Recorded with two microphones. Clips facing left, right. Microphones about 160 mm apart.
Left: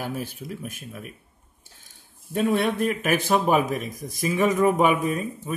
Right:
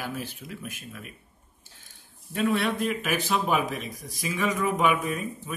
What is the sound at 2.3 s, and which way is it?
Speech, 50° left (ahead or behind).